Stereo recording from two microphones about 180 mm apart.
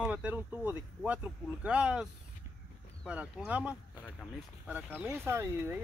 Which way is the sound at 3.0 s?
5° right (ahead or behind).